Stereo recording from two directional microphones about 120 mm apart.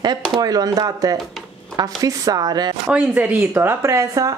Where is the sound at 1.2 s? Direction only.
Centre (ahead or behind).